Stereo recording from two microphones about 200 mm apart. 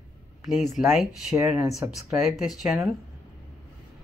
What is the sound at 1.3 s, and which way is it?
Speech, 15° right (ahead or behind).